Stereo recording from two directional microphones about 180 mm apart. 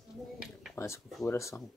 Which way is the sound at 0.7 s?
15° left (ahead or behind).